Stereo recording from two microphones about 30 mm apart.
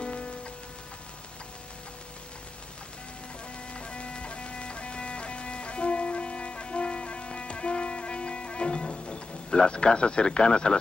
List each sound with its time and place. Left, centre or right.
0.0 s rain on surface: left
3.7 s music: left